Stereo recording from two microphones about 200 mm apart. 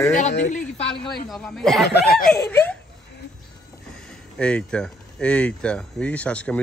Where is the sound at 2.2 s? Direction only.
10° left (ahead or behind).